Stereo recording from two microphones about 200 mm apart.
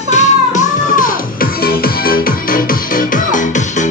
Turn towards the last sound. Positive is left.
turn(degrees=40)  # may be behind; listen again after turning